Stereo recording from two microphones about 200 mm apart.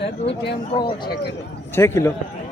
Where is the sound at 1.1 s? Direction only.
55° left (ahead or behind).